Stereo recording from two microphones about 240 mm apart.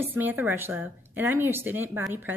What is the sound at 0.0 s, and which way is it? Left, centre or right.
A woman's voice, centre.